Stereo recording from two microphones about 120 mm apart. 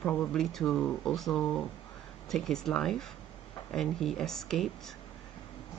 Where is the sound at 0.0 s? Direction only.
10° left (ahead or behind).